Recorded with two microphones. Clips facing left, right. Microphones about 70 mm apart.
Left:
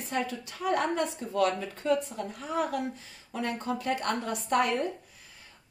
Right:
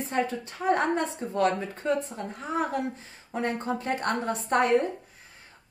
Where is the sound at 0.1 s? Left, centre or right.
Right.